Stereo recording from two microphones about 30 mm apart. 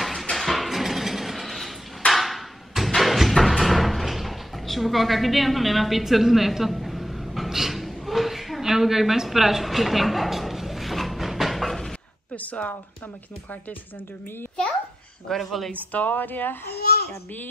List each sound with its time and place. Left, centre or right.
0.0 s music: centre
0.4 s a sound: centre
3.0 s drawer open or close: centre
7.4 s a sound: centre
12.4 s speech: left
15.2 s speech: centre
16.1 s speech: left